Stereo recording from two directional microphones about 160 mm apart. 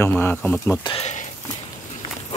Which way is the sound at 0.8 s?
35° left (ahead or behind).